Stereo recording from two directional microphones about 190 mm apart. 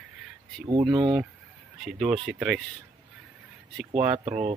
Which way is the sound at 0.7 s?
25° right (ahead or behind).